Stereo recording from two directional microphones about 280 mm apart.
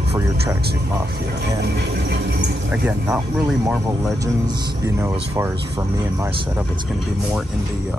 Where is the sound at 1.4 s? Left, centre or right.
Right.